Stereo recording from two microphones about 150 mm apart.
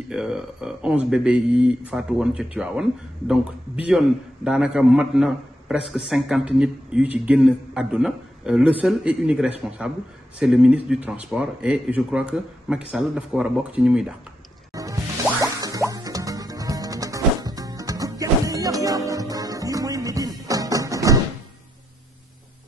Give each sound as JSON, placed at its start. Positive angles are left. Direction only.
{"t": 0.1, "sound": "a man's voice", "side_deg": -5}
{"t": 14.7, "sound": "music", "side_deg": -25}